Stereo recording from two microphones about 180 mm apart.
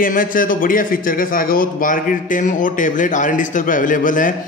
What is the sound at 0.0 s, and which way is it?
Speech, 50° left (ahead or behind).